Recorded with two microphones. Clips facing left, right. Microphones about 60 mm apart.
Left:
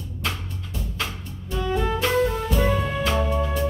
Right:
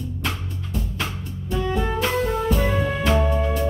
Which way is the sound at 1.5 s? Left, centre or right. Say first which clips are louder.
Right 1 dB; centre.